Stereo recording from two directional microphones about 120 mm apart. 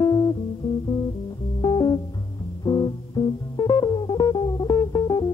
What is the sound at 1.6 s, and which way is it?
Music, 40° left (ahead or behind).